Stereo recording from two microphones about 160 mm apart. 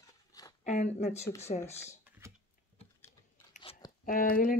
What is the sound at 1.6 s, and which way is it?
Speech, 15° left (ahead or behind).